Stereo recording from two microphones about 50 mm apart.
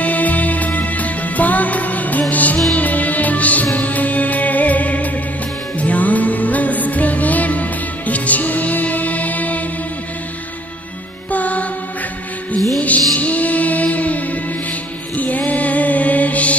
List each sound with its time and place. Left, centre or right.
0.0 s music: left
11.3 s music: left
12.8 s music: left